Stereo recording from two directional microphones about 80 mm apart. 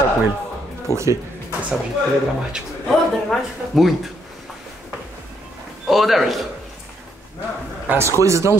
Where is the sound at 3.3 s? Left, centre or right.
Centre.